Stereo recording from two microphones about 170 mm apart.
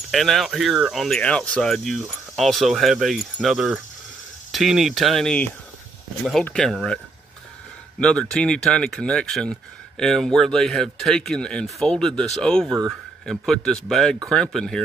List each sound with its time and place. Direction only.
0.1 s speech: centre (ahead or behind)
8.0 s speech: 5° left (ahead or behind)